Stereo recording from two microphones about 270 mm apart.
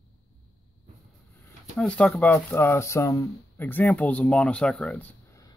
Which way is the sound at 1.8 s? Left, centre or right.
Centre.